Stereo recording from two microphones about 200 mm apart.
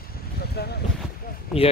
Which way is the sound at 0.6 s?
55° left (ahead or behind).